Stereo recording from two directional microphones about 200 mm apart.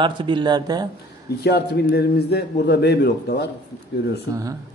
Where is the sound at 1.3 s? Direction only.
55° left (ahead or behind).